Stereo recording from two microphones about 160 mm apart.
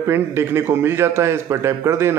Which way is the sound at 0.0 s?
15° right (ahead or behind).